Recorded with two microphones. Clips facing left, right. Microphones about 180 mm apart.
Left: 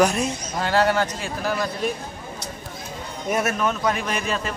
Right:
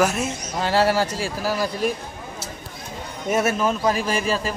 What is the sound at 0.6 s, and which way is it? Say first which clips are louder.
Speech: right 1 dB; 30° right (ahead or behind).